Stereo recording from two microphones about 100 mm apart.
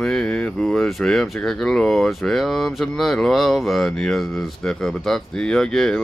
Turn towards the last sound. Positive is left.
turn(degrees=5)  # may be behind; listen again after turning